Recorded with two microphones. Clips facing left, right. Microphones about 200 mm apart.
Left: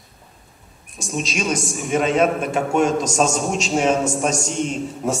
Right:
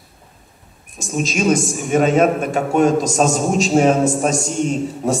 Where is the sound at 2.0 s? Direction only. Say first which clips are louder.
Right 4 dB; 45° right (ahead or behind).